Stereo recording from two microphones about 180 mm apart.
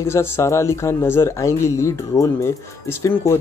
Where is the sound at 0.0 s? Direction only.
15° left (ahead or behind).